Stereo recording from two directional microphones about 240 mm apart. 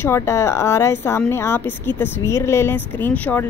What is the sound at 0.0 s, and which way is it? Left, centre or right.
Speech, centre.